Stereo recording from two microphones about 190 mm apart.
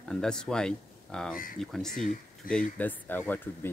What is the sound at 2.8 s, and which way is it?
Speech, 10° left (ahead or behind).